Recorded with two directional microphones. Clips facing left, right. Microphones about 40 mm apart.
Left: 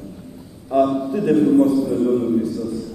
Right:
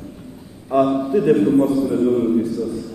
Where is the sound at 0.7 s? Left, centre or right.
Right.